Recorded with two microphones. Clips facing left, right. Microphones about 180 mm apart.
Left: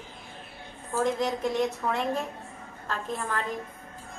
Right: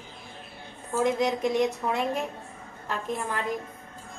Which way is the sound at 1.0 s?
15° right (ahead or behind).